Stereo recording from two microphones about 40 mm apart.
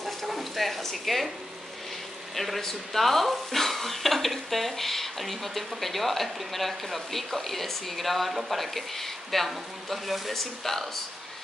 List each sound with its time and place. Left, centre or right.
0.3 s speech: centre
2.3 s speech: centre